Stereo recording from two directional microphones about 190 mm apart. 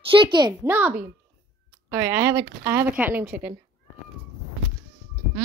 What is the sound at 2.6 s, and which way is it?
Speech, 10° right (ahead or behind).